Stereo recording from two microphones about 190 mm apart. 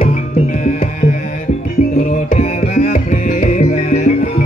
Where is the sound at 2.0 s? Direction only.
40° left (ahead or behind).